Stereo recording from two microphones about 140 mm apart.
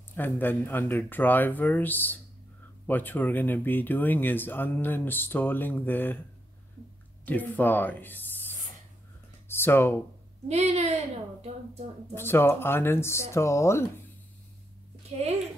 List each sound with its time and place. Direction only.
0.1 s speech: 15° left (ahead or behind)
7.2 s speech: 10° left (ahead or behind)
10.5 s a woman's voice: 50° right (ahead or behind)
12.1 s speech: 15° left (ahead or behind)
15.0 s speech: 50° right (ahead or behind)